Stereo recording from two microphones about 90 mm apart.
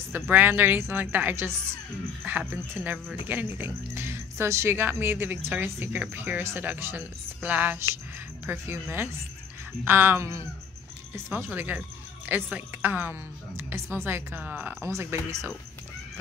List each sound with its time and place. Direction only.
0.1 s speech: 20° right (ahead or behind)